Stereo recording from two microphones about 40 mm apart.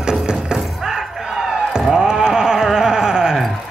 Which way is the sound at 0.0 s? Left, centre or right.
Centre.